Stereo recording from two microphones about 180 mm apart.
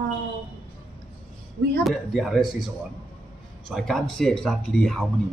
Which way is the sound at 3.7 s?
Centre (ahead or behind).